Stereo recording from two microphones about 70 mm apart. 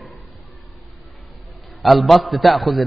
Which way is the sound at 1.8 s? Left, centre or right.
Centre.